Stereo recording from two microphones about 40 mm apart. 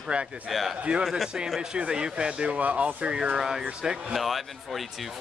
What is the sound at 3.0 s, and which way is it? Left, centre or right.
Speech, right.